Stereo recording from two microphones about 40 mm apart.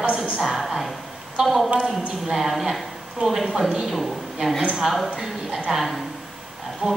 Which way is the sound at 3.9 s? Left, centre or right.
Centre.